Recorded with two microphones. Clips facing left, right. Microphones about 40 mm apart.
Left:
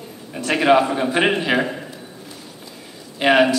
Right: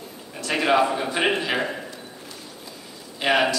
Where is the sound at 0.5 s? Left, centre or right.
Centre.